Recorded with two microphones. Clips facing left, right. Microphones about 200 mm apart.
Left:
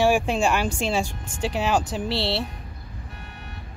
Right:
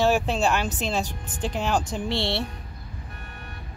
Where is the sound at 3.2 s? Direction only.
50° right (ahead or behind).